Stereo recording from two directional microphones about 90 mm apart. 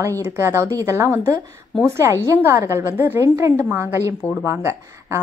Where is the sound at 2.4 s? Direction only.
30° right (ahead or behind).